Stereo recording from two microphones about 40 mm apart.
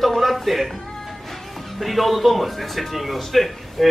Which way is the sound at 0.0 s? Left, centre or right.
Centre.